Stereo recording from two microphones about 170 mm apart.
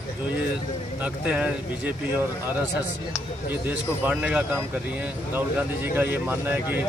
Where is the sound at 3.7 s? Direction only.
10° right (ahead or behind).